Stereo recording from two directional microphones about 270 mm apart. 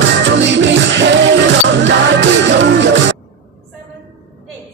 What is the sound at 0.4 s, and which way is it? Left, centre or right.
Music, right.